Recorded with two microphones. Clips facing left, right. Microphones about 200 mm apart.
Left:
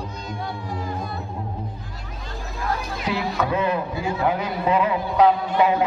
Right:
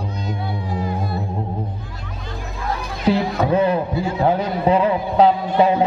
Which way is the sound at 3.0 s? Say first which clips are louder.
Right 8 dB; 30° right (ahead or behind).